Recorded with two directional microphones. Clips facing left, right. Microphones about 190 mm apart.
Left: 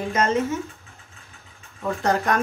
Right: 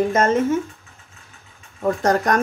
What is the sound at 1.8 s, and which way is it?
Speech, 40° right (ahead or behind).